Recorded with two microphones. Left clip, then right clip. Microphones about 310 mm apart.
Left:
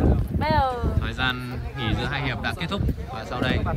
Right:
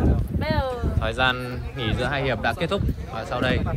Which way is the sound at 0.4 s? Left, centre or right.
Centre.